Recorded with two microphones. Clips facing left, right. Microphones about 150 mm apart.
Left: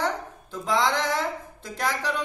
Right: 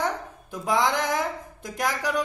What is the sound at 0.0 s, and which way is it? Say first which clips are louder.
A woman's voice: even; 15° right (ahead or behind).